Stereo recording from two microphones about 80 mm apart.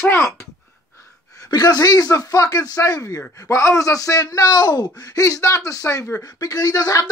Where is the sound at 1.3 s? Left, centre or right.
Left.